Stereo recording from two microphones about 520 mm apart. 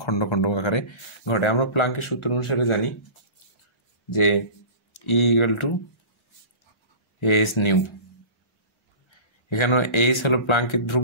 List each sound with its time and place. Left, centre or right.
0.0 s speech: left
4.1 s speech: left
7.2 s speech: left
9.5 s speech: left